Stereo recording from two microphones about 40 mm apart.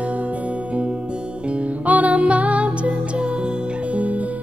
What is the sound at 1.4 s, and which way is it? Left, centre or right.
Music, right.